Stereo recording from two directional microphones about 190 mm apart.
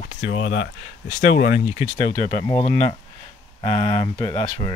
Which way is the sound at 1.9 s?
35° left (ahead or behind).